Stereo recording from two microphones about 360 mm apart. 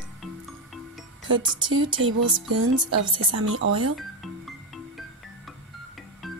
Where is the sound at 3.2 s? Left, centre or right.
Right.